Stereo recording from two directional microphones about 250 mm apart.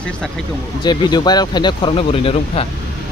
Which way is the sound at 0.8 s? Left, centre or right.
Centre.